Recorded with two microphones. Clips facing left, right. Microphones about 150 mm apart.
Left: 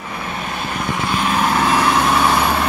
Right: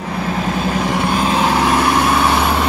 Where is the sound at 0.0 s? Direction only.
35° right (ahead or behind).